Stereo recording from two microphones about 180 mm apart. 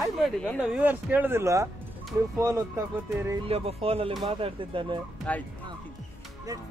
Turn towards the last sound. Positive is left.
turn(degrees=5)  # may be behind; listen again after turning